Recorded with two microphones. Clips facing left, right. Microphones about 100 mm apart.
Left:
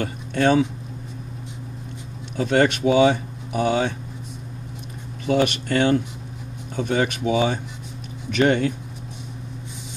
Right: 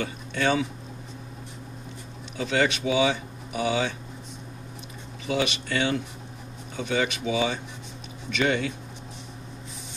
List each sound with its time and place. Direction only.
0.0 s a sound: 40° left (ahead or behind)
2.3 s speech: 45° left (ahead or behind)
5.2 s speech: 50° left (ahead or behind)